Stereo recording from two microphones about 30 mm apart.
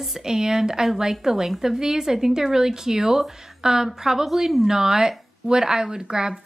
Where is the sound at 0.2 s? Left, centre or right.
Right.